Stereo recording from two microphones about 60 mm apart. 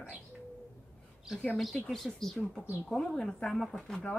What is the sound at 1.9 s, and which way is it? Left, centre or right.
Speech, centre.